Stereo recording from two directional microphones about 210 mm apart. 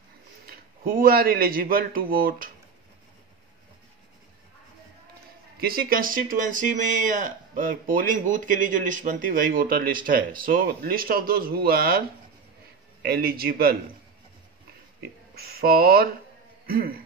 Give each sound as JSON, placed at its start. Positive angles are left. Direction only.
{"t": 0.5, "sound": "speech", "side_deg": -45}
{"t": 5.6, "sound": "speech", "side_deg": -45}
{"t": 13.0, "sound": "speech", "side_deg": -45}
{"t": 15.3, "sound": "speech", "side_deg": -45}